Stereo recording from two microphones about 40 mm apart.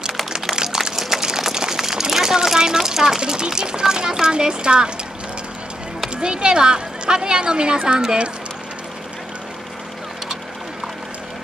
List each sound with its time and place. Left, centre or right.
0.3 s music: centre
0.9 s a sound: centre
2.3 s speech: centre
6.2 s a woman's voice: right